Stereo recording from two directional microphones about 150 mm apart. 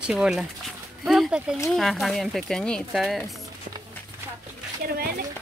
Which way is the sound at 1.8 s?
Centre (ahead or behind).